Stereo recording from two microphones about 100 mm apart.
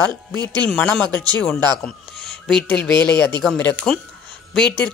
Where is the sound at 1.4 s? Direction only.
10° left (ahead or behind).